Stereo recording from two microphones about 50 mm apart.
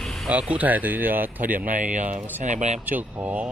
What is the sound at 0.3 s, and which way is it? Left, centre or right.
Speech, right.